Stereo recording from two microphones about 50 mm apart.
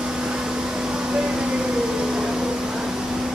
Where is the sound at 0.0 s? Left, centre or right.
Centre.